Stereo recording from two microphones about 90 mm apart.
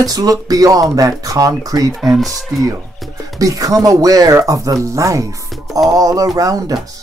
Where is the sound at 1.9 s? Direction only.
Centre (ahead or behind).